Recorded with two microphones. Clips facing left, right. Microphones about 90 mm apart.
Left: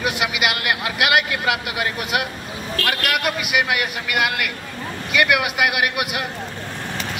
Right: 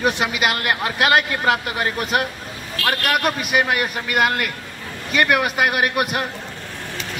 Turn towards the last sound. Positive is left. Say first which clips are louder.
# right 2 dB
turn(degrees=-40)  # may be behind; listen again after turning